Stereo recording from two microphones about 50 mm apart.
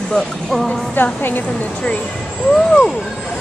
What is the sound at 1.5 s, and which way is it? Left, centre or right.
Speech, left.